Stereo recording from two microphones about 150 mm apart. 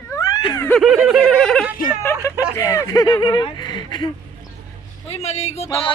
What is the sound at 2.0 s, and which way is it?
Speech, 15° left (ahead or behind).